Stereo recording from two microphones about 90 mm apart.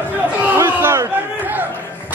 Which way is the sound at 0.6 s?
30° right (ahead or behind).